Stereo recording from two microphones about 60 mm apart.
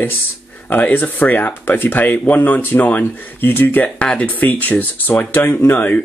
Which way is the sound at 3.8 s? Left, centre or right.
Centre.